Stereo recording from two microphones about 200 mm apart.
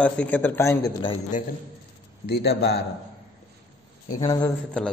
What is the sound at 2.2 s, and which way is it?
Speech, 55° left (ahead or behind).